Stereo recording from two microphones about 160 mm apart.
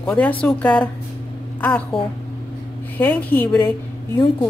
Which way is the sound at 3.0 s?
10° left (ahead or behind).